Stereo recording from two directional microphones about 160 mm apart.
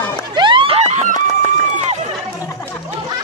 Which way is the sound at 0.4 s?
30° right (ahead or behind).